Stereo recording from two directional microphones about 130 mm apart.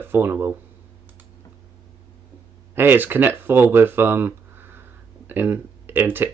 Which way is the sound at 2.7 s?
15° right (ahead or behind).